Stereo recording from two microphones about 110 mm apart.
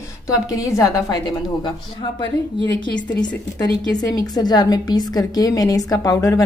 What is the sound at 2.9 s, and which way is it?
A woman's voice, 40° left (ahead or behind).